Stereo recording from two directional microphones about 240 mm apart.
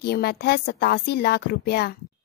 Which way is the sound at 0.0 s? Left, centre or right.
Left.